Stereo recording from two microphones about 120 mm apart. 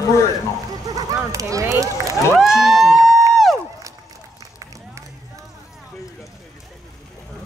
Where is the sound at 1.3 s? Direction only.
30° right (ahead or behind).